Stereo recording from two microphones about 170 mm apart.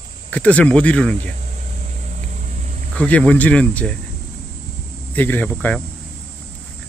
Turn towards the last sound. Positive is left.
turn(degrees=10)  # may be behind; listen again after turning